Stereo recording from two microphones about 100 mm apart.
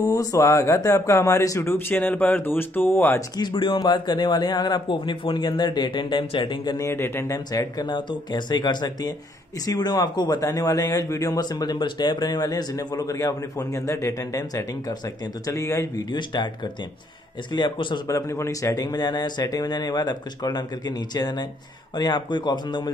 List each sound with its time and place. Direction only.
0.0 s speech: 35° left (ahead or behind)
3.2 s a man's voice: 45° left (ahead or behind)
6.8 s speech: 25° left (ahead or behind)
7.3 s a man's voice: 35° left (ahead or behind)
16.1 s a man's voice: 50° left (ahead or behind)
18.0 s a man's voice: 30° left (ahead or behind); by 22.8 s 45° left (ahead or behind)